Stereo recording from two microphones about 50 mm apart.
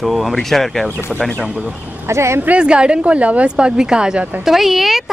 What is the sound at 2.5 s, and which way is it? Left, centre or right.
Speech, right.